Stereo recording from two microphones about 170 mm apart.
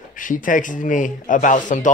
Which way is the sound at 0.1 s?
50° left (ahead or behind).